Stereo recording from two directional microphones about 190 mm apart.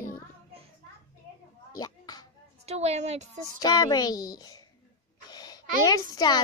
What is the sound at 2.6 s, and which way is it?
Speech, 35° right (ahead or behind).